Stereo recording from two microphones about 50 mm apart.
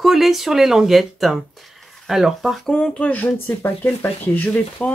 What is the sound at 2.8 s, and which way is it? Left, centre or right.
Speech, left.